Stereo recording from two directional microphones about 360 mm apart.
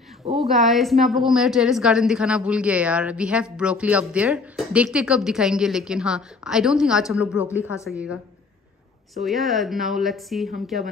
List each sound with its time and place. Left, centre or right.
0.2 s a woman's voice: centre
0.5 s a woman's voice: centre
9.2 s a woman's voice: centre